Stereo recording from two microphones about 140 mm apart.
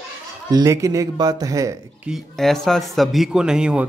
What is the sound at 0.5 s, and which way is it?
A man's voice, 25° right (ahead or behind).